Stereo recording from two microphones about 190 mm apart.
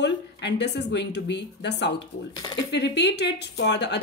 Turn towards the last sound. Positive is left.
turn(degrees=65)  # may be behind; listen again after turning